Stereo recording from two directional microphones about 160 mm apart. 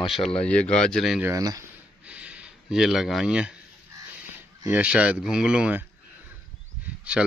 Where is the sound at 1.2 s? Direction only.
20° right (ahead or behind).